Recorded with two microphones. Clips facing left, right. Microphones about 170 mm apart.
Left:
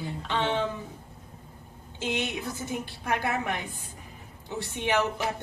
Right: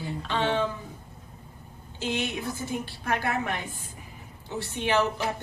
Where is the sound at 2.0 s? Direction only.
20° left (ahead or behind).